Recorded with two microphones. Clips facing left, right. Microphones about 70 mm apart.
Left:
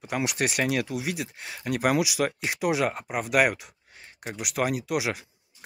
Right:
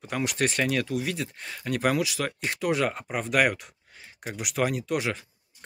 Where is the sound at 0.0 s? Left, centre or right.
Centre.